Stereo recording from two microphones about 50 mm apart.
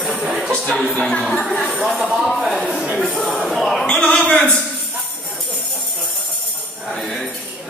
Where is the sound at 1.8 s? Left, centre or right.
Centre.